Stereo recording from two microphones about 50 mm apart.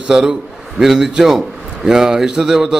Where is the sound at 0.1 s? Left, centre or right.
Centre.